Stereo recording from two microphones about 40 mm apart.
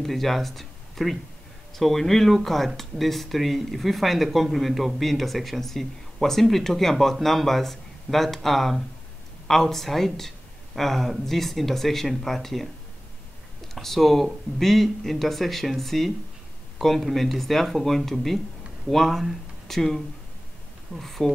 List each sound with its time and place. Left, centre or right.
0.0 s speech: centre
13.7 s speech: centre
21.0 s speech: centre